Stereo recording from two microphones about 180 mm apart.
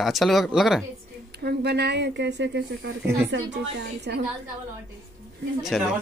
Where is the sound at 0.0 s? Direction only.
Centre (ahead or behind).